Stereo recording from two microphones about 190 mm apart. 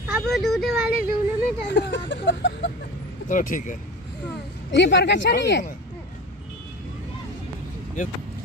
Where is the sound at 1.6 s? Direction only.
70° left (ahead or behind).